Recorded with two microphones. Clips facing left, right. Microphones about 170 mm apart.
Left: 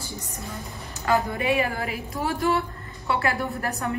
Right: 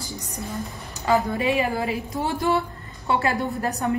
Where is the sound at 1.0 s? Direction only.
20° right (ahead or behind).